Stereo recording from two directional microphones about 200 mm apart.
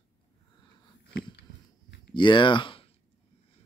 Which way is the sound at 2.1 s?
25° left (ahead or behind).